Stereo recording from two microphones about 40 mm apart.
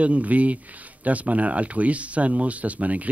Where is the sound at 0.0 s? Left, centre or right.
Right.